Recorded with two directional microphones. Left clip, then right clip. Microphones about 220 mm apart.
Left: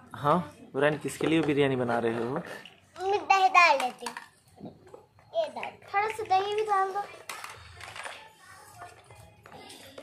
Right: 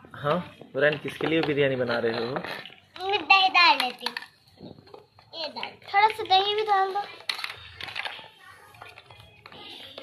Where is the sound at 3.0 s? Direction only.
25° left (ahead or behind).